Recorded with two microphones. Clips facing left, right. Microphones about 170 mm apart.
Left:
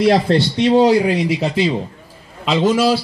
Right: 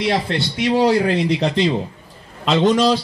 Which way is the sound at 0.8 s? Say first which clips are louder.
Left 2 dB; 15° left (ahead or behind).